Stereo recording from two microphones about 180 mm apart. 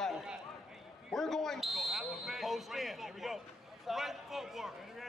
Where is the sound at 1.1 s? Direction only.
Centre (ahead or behind).